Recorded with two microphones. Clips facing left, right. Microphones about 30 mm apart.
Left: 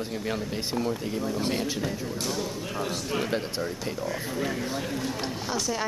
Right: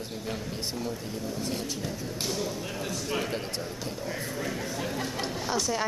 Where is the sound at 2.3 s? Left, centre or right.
Centre.